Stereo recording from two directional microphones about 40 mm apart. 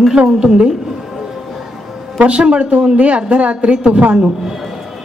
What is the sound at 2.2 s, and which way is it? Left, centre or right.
A woman's voice, right.